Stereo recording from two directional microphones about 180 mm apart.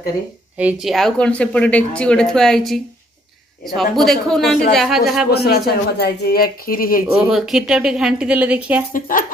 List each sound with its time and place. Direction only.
0.6 s speech: 5° right (ahead or behind)
5.3 s speech: 65° left (ahead or behind)
7.2 s speech: centre (ahead or behind)
8.9 s speech: 50° left (ahead or behind)